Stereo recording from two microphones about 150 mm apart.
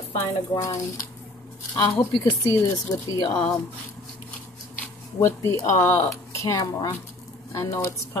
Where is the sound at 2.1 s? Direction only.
30° left (ahead or behind).